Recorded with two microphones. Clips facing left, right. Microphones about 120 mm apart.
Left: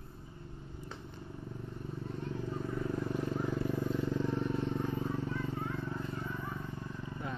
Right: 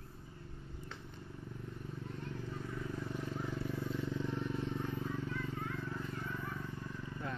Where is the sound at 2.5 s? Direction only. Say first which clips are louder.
Left 8 dB; 45° left (ahead or behind).